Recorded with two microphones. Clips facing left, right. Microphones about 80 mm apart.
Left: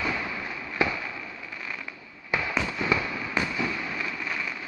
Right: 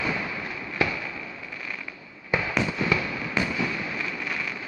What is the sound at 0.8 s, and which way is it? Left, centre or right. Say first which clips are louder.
Fireworks: even; left.